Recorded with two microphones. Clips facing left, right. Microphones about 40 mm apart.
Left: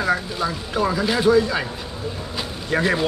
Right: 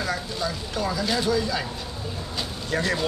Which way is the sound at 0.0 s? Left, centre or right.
Left.